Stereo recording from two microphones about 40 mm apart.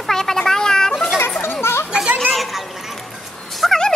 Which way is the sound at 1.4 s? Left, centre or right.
Left.